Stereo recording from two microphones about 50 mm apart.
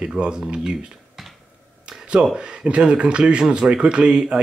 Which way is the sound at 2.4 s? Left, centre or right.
Centre.